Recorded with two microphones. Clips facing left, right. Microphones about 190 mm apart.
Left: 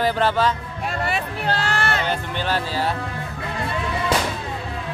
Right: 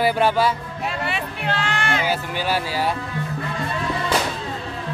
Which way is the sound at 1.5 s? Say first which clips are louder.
Even; 40° left (ahead or behind).